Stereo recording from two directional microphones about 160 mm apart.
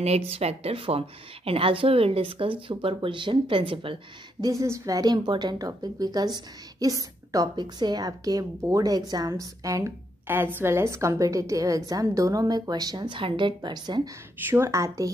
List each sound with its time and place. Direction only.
0.0 s speech: 40° right (ahead or behind)
4.5 s a woman's voice: 20° right (ahead or behind)